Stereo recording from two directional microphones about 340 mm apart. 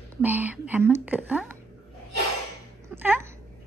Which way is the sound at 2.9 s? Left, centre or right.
Centre.